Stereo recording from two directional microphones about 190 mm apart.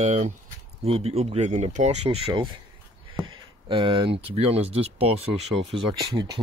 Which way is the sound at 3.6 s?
25° right (ahead or behind).